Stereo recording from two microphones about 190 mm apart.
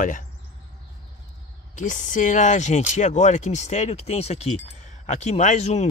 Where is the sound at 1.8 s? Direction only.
40° left (ahead or behind).